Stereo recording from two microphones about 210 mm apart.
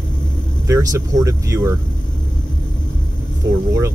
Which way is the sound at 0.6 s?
15° right (ahead or behind).